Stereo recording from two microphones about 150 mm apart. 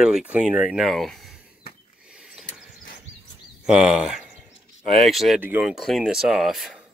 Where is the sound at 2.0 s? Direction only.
5° right (ahead or behind).